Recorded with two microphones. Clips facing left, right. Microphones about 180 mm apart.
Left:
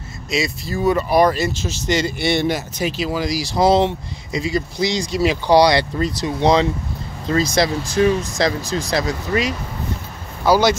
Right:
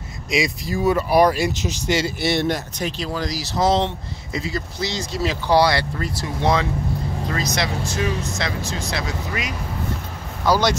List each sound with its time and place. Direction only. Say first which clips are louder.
0.3 s speech: even; 15° right (ahead or behind)
1.9 s speech: left 2 dB; 5° right (ahead or behind); by 6.7 s 20° left (ahead or behind)
7.3 s speech: left 9 dB; 30° left (ahead or behind)
10.4 s speech: left 4 dB; 5° left (ahead or behind)